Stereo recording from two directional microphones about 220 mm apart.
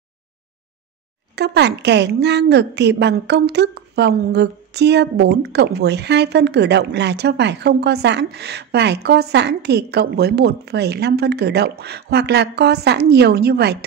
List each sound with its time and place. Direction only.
1.3 s a woman's voice: 50° right (ahead or behind)